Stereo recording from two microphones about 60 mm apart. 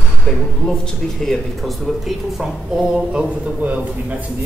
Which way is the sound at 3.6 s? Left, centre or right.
Right.